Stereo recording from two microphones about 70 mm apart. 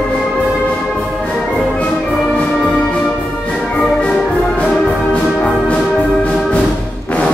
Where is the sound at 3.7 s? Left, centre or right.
Centre.